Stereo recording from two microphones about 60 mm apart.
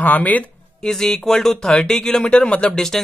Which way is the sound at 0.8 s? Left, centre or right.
Centre.